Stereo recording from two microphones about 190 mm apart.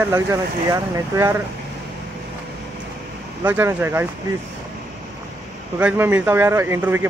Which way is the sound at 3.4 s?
10° right (ahead or behind).